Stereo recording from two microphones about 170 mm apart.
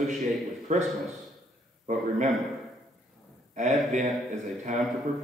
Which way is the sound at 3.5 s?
45° right (ahead or behind).